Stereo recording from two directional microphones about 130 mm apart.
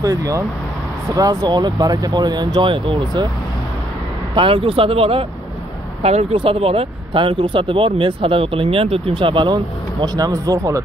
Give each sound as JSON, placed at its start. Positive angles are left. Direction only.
{"t": 0.0, "sound": "speech", "side_deg": -25}
{"t": 4.4, "sound": "speech", "side_deg": -40}